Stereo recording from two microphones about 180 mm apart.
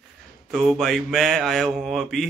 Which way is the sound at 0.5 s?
Centre (ahead or behind).